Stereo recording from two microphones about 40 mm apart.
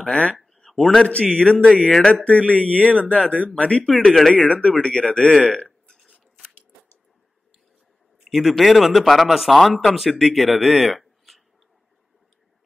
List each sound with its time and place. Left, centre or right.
0.1 s speech: left
0.7 s a man's voice: centre
1.0 s speech: left
2.2 s speech: left
3.8 s speech: centre
4.5 s speech: left
8.2 s speech: centre
11.0 s a sound: centre